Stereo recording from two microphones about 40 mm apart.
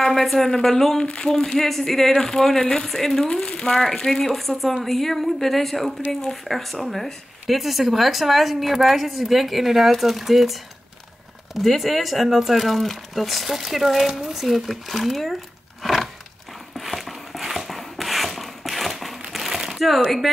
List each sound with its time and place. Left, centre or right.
0.0 s speech: centre
3.3 s speech: centre
4.1 s speech: centre
15.8 s a sound: centre